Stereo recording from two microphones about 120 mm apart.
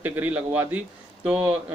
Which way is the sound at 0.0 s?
20° right (ahead or behind).